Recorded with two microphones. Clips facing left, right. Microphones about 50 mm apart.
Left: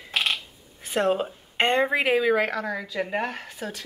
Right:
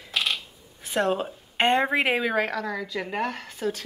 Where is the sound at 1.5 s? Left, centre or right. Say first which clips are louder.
Even; centre.